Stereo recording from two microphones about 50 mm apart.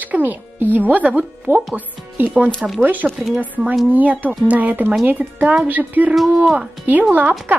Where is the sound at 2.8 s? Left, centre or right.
Right.